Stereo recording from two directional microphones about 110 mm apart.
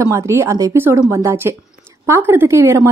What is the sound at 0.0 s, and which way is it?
A woman's voice, 25° right (ahead or behind).